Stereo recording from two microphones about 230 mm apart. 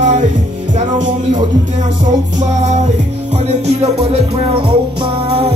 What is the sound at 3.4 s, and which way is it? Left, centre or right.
Music, right.